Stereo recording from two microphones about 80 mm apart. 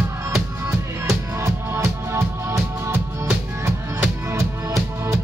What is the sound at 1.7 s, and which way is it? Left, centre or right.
Music, right.